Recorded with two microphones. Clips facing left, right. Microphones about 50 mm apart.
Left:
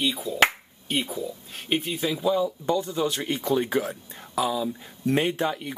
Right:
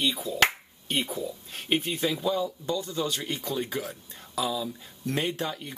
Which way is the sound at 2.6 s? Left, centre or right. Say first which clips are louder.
Left 5 dB; left.